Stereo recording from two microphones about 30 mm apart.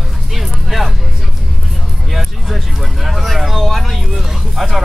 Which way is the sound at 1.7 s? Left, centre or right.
Centre.